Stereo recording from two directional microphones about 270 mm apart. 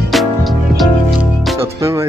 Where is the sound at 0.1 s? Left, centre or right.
Centre.